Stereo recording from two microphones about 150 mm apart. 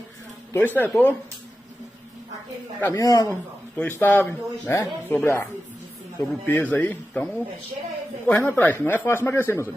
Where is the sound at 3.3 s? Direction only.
15° left (ahead or behind).